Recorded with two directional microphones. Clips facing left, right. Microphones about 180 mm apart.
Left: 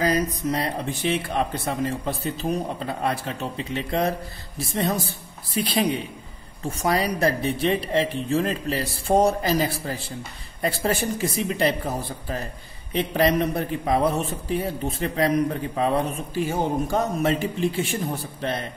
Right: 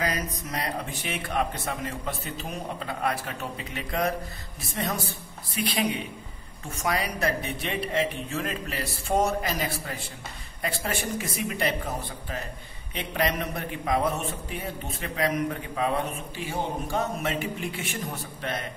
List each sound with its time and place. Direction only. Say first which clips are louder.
0.0 s a man's voice: left 8 dB; 30° left (ahead or behind)
12.9 s a man's voice: left 7 dB; 35° left (ahead or behind)